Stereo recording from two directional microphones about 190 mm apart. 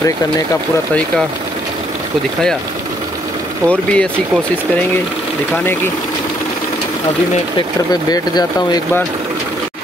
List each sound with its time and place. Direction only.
3.6 s speech: 5° left (ahead or behind)
7.5 s speech: 20° left (ahead or behind)